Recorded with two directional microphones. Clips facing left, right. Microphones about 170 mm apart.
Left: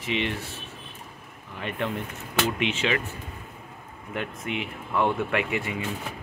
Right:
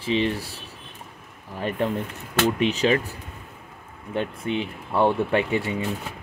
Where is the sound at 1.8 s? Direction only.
35° right (ahead or behind).